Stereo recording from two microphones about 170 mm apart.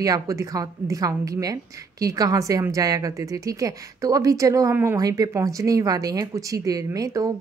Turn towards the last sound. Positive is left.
turn(degrees=-20)  # may be behind; listen again after turning